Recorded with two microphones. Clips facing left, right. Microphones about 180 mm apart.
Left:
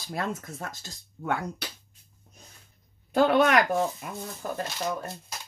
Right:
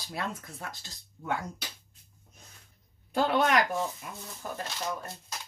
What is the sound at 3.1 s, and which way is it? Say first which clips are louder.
Speech: left 5 dB; 65° left (ahead or behind).